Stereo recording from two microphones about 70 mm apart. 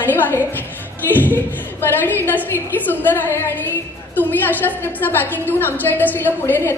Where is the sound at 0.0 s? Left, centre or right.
Left.